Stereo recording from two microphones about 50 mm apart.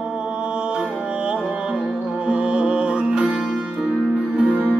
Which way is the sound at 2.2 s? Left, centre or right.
Centre.